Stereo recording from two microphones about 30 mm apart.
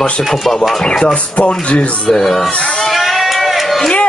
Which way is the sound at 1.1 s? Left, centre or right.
Left.